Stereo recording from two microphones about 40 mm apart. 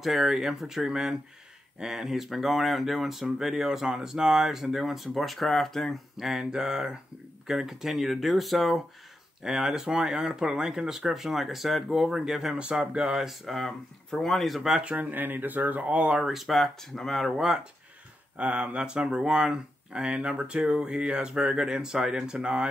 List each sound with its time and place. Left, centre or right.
0.0 s speech: centre
6.1 s speech: centre
9.4 s speech: centre
12.5 s speech: right
13.1 s speech: centre
13.5 s speech: centre
14.4 s speech: centre
15.0 s speech: right
16.0 s speech: right
16.3 s speech: centre
18.4 s speech: right; by 19.5 s centre
19.5 s speech: right
21.6 s speech: centre